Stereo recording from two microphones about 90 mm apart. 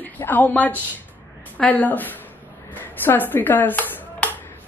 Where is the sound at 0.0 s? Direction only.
20° left (ahead or behind).